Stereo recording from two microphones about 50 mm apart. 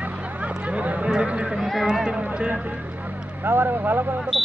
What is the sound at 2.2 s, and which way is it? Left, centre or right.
Speech, right.